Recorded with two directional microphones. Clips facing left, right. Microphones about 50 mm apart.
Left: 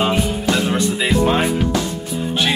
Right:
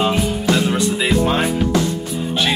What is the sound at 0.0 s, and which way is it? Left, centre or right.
Music, centre.